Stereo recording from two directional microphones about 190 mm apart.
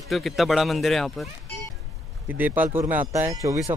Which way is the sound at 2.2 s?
10° right (ahead or behind).